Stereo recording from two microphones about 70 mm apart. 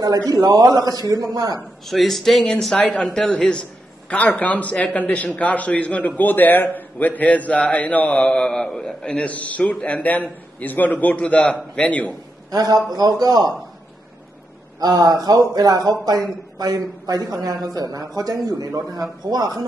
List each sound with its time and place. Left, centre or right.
0.0 s speech: right
1.9 s speech: centre
2.8 s a man's voice: centre
12.4 s speech: right
14.8 s speech: right